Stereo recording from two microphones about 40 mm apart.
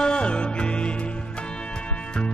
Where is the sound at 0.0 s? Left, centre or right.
Left.